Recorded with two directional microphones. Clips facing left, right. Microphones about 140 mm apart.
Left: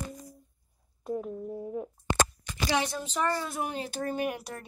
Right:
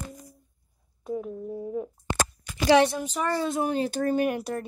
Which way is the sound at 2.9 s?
10° right (ahead or behind).